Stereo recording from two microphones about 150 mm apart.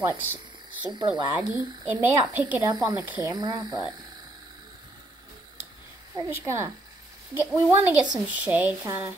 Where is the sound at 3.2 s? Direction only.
25° right (ahead or behind).